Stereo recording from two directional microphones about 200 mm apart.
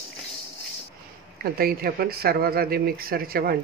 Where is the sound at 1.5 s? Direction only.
50° right (ahead or behind).